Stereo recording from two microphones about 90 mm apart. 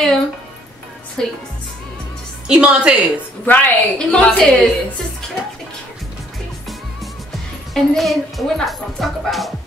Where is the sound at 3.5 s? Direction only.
15° left (ahead or behind).